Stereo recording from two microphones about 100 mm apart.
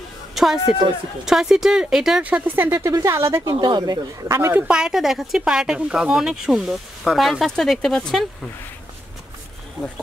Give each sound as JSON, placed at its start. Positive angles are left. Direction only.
{"t": 0.3, "sound": "a sound", "side_deg": -5}
{"t": 1.2, "sound": "speech", "side_deg": -5}
{"t": 2.2, "sound": "speech", "side_deg": -15}
{"t": 2.7, "sound": "speech", "side_deg": -35}
{"t": 3.4, "sound": "speech", "side_deg": -45}
{"t": 4.4, "sound": "speech", "side_deg": -25}
{"t": 4.6, "sound": "speech", "side_deg": -5}